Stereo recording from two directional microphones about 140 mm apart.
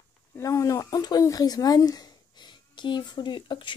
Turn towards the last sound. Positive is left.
turn(degrees=35)  # may be behind; listen again after turning